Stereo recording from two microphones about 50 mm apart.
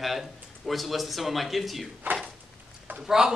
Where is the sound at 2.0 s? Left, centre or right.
Right.